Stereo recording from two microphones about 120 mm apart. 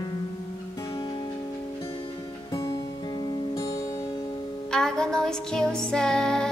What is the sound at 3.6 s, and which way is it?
Music, 30° left (ahead or behind).